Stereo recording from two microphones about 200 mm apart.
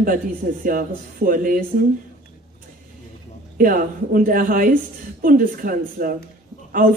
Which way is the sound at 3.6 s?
45° right (ahead or behind).